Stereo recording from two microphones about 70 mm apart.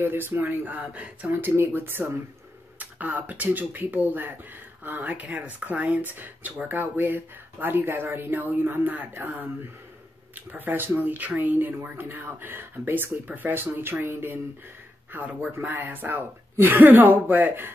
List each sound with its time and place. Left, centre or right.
0.0 s speech: right
1.3 s speech: right